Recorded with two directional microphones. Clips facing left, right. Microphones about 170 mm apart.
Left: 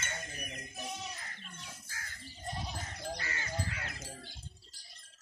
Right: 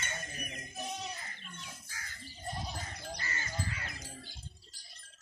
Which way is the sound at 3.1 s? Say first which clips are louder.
Left 1 dB; 70° left (ahead or behind).